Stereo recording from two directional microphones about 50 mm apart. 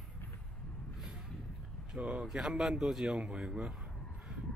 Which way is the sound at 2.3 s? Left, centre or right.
Centre.